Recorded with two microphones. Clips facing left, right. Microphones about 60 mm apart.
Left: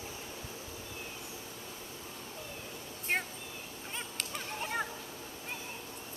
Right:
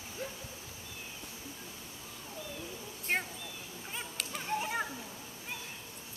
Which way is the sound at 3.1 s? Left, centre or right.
Centre.